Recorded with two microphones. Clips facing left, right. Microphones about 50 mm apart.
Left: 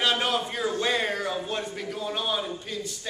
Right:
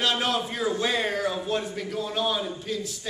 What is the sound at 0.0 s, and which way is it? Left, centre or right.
A man's voice, centre.